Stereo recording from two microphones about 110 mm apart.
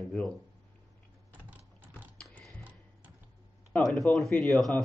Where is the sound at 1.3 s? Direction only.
15° right (ahead or behind).